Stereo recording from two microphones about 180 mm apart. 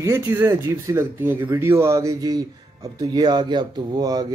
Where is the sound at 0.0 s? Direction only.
15° right (ahead or behind).